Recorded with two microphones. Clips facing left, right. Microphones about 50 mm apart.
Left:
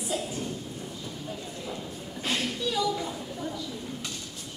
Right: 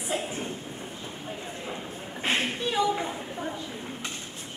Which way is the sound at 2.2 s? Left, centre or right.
Right.